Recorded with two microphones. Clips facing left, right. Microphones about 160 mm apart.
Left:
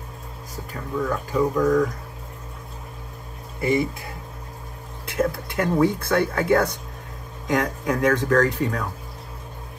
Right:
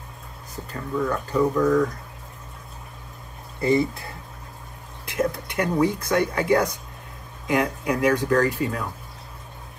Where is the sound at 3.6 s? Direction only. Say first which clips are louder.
Right 1 dB; 20° left (ahead or behind).